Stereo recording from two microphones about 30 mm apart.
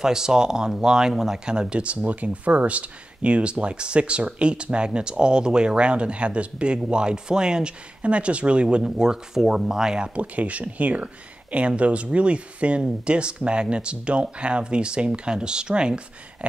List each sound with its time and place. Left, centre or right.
0.0 s speech: right
1.4 s speech: right
2.0 s speech: right
8.0 s speech: right
8.8 s speech: right
10.1 s speech: right